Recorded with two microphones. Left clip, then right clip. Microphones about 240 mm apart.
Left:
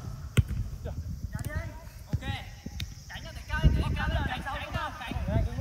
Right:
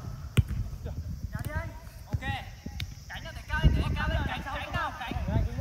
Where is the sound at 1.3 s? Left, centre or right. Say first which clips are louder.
Right 2 dB; right.